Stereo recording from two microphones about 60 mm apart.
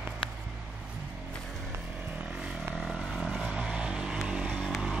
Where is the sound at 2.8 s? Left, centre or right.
Centre.